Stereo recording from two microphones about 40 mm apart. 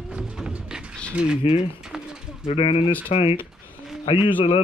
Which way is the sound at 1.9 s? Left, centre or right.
Centre.